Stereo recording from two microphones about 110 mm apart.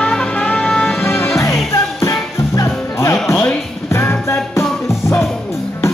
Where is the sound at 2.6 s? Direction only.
25° left (ahead or behind).